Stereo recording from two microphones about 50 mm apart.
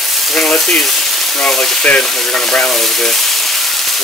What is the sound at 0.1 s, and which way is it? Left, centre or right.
Frying, centre.